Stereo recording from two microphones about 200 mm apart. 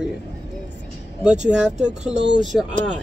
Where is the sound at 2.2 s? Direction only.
65° right (ahead or behind).